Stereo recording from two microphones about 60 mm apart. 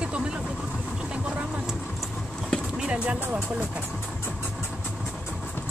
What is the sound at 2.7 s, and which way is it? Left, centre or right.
Vehicle, centre.